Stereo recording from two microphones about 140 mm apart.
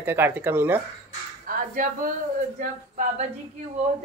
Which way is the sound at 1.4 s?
80° right.